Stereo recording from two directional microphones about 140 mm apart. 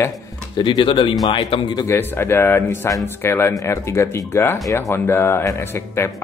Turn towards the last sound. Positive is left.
turn(degrees=20)  # may be behind; listen again after turning